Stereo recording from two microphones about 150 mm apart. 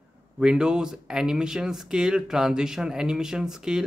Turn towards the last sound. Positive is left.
turn(degrees=-5)  # may be behind; listen again after turning